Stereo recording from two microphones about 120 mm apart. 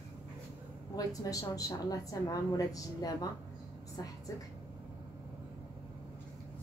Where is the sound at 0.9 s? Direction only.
30° left (ahead or behind).